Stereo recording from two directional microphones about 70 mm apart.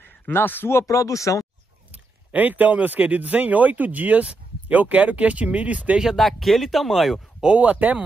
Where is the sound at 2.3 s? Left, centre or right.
Right.